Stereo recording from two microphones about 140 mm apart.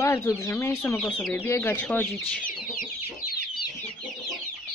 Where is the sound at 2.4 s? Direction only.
70° left (ahead or behind).